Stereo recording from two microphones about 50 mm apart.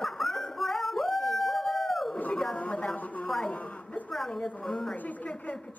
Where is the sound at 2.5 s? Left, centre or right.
Left.